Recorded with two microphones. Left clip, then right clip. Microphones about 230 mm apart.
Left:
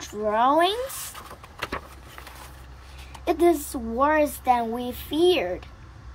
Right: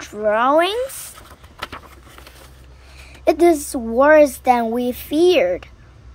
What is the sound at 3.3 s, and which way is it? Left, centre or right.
A woman's voice, right.